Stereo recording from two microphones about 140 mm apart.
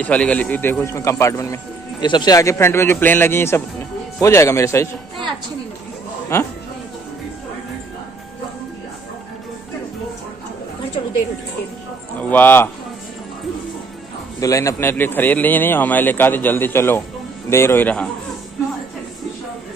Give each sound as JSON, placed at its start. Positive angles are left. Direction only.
{"t": 0.0, "sound": "a man's voice", "side_deg": 10}
{"t": 6.3, "sound": "a man's voice", "side_deg": 20}
{"t": 12.2, "sound": "speech", "side_deg": 15}
{"t": 14.4, "sound": "speech", "side_deg": 25}